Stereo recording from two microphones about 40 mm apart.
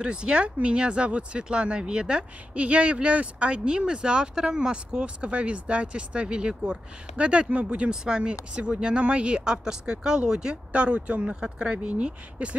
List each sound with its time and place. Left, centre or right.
0.0 s speech: right
7.9 s speech: centre
10.5 s speech: right
11.2 s speech: centre